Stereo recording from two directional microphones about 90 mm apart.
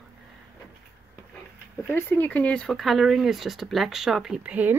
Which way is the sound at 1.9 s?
20° left (ahead or behind).